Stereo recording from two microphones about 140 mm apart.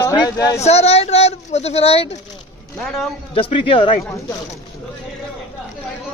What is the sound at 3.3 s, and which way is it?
Speech, 40° left (ahead or behind).